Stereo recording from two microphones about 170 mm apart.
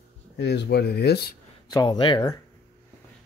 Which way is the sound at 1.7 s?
25° left (ahead or behind).